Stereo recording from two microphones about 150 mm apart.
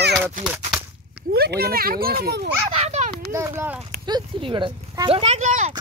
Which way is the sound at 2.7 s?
45° right (ahead or behind).